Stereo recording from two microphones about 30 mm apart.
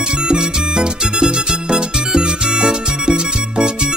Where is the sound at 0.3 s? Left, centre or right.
Right.